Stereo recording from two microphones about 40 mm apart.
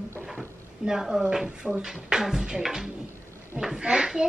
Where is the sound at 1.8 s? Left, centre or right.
Right.